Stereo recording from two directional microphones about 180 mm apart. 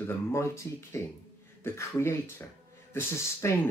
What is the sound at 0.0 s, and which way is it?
Speech, 15° left (ahead or behind).